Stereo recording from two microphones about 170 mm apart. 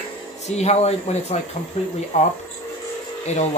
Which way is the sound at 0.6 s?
40° left (ahead or behind).